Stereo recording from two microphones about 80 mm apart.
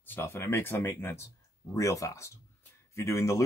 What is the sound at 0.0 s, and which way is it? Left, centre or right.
Speech, left.